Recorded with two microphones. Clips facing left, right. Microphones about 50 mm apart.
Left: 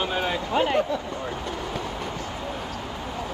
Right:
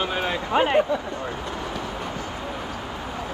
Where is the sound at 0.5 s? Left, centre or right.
Right.